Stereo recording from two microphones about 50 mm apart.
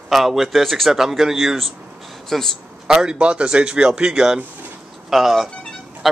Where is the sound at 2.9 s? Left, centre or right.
Centre.